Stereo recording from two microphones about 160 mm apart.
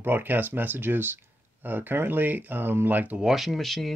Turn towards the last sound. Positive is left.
turn(degrees=0)  # may be behind; listen again after turning